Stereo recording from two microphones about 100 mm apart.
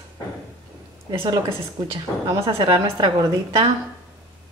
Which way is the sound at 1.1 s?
45° right (ahead or behind).